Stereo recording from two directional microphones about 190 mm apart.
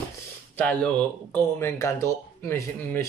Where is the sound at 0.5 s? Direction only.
5° left (ahead or behind).